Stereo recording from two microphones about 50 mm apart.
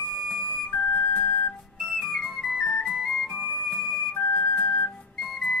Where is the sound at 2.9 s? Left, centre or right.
Centre.